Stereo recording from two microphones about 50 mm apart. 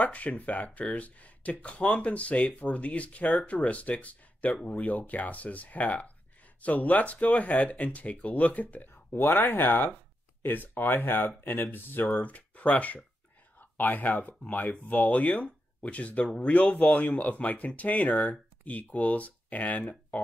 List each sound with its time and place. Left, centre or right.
0.0 s speech: left